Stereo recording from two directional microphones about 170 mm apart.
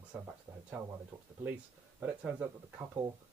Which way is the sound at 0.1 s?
5° right (ahead or behind).